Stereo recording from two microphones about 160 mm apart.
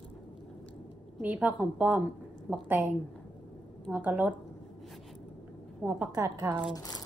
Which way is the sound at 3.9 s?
10° right (ahead or behind).